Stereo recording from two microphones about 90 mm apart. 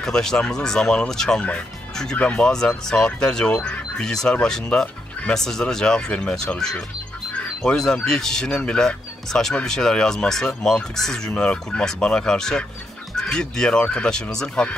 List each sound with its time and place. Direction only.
0.0 s speech: 5° left (ahead or behind)